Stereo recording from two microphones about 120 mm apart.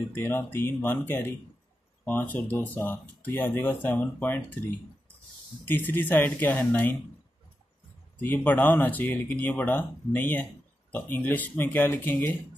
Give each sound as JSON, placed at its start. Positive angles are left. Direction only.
{"t": 0.1, "sound": "speech", "side_deg": 20}
{"t": 5.7, "sound": "speech", "side_deg": 15}
{"t": 8.2, "sound": "speech", "side_deg": 15}